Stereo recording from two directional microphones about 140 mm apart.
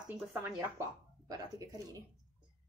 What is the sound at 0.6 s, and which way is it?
Speech, 25° right (ahead or behind).